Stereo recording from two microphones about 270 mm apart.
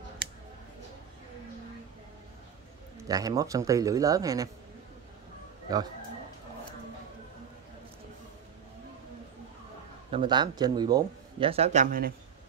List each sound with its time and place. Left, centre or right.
3.1 s a man's voice: centre
10.1 s a man's voice: centre